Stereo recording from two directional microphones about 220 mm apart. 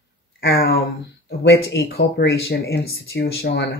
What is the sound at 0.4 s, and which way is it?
Speech, 45° left (ahead or behind).